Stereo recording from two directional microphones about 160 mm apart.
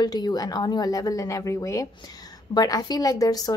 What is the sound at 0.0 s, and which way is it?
Speech, 25° left (ahead or behind).